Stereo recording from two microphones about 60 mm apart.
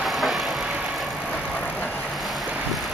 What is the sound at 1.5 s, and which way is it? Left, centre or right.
Vehicle, left.